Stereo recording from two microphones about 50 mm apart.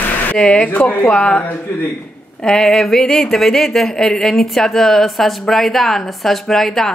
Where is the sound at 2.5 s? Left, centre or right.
Centre.